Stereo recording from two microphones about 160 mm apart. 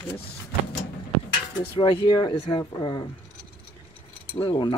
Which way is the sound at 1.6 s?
30° left (ahead or behind).